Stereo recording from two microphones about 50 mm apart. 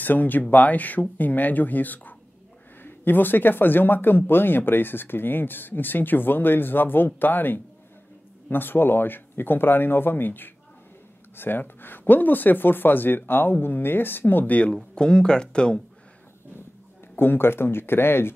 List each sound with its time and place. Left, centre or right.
0.0 s speech: left
15.0 s speech: centre
17.1 s speech: left